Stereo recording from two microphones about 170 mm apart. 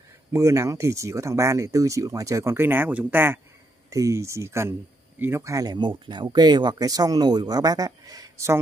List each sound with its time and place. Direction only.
0.3 s speech: 15° right (ahead or behind)